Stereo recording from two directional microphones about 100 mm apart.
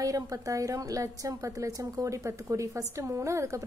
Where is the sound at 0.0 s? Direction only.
35° right (ahead or behind).